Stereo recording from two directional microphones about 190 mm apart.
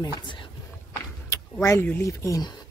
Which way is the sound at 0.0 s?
25° left (ahead or behind).